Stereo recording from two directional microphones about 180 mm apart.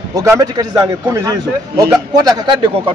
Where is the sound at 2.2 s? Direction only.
25° right (ahead or behind).